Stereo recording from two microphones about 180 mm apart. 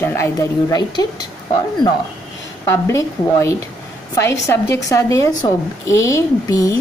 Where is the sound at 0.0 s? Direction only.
15° left (ahead or behind).